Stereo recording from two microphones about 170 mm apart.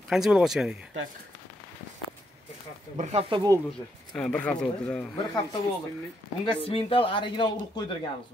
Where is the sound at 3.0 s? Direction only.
40° right (ahead or behind).